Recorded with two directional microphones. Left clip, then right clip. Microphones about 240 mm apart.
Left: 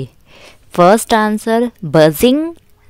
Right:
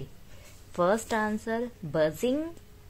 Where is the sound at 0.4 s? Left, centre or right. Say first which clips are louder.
Left 17 dB; left.